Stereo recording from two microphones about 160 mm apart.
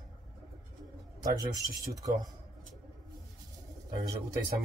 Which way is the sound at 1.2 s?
20° right (ahead or behind).